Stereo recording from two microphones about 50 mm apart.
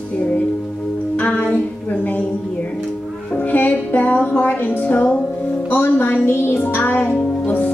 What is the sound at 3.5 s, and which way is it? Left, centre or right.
Music, left.